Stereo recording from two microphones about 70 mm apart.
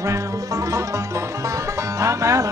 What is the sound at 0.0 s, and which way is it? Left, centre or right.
Music, right.